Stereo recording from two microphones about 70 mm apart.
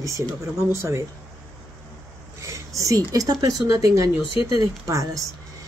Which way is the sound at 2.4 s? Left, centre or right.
Right.